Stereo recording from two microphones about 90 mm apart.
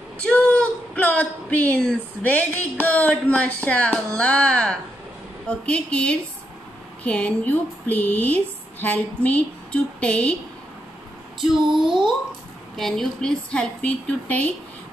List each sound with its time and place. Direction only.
0.2 s speech: 15° left (ahead or behind)
12.7 s speech: 5° left (ahead or behind)